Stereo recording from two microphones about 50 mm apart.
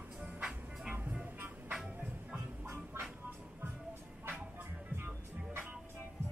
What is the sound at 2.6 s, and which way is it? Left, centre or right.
Train, right.